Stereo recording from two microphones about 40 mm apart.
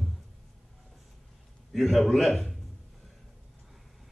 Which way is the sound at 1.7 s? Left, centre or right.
Centre.